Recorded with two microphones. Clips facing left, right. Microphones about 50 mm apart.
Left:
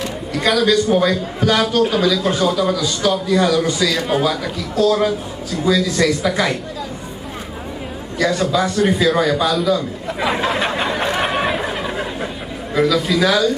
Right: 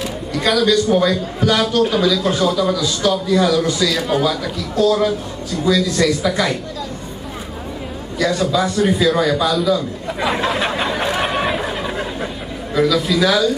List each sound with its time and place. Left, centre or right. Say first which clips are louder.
0.0 s a man's voice: even; centre
8.2 s a sound: even; centre
12.7 s a man's voice: even; centre